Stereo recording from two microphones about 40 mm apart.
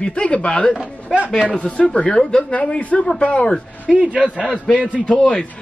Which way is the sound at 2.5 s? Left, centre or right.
Left.